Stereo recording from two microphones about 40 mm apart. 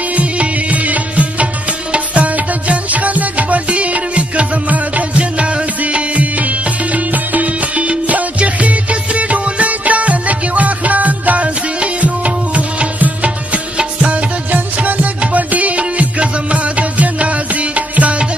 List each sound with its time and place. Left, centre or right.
0.1 s music: right
14.5 s music: right